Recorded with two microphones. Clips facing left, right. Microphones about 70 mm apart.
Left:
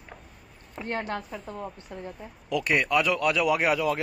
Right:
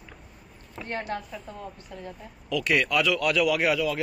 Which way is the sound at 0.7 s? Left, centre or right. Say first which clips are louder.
Left 2 dB; left.